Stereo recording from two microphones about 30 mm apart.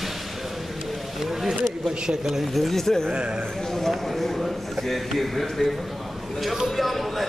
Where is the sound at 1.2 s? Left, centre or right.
Centre.